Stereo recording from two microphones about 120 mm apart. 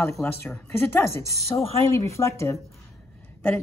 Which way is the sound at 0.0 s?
20° left (ahead or behind).